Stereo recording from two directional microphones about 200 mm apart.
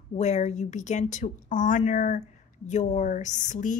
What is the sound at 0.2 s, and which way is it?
Speech, 35° left (ahead or behind).